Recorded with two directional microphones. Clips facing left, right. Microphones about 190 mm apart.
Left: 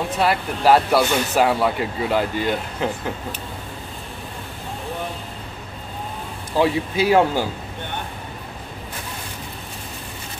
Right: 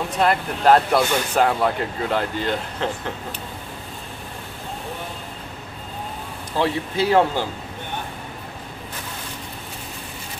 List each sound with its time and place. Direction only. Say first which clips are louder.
0.2 s speech: right 1 dB; 5° left (ahead or behind)
6.6 s speech: left 2 dB; 10° left (ahead or behind)